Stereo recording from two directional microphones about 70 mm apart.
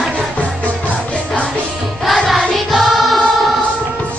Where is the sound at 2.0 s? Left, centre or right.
Centre.